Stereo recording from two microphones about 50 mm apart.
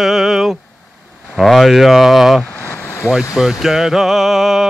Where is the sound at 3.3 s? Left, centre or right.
Centre.